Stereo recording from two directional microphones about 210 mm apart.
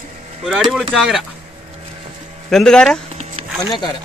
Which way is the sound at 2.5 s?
5° left (ahead or behind).